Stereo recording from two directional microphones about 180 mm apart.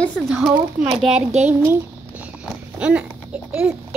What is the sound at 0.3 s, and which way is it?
Speech, centre (ahead or behind).